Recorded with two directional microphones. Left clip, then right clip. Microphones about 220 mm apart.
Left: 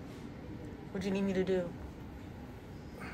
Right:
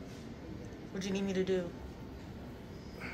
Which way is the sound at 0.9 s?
Centre (ahead or behind).